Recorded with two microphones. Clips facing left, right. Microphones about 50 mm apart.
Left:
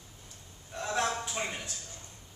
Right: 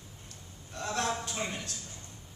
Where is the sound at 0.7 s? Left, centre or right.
Centre.